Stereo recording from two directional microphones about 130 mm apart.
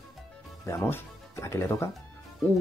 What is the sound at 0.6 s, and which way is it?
Speech, 20° left (ahead or behind).